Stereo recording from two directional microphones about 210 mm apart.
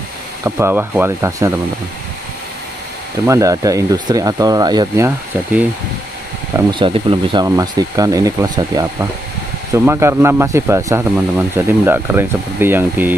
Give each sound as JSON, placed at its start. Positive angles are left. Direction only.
{"t": 0.4, "sound": "speech", "side_deg": -10}
{"t": 3.3, "sound": "speech", "side_deg": -15}
{"t": 6.7, "sound": "speech", "side_deg": -25}